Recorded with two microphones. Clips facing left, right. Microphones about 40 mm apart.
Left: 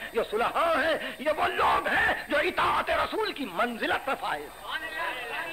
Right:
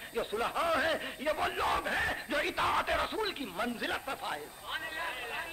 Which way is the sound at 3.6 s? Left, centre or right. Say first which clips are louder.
Left 8 dB; left.